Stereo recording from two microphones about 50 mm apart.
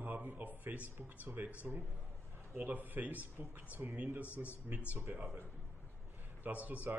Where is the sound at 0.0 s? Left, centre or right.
Right.